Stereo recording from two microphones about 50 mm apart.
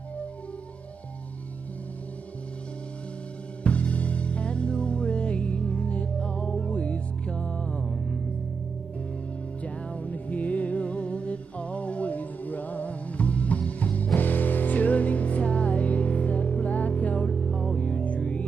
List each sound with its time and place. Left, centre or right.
3.6 s music: left
9.6 s music: left